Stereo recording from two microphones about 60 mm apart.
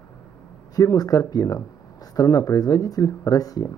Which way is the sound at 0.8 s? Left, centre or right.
Left.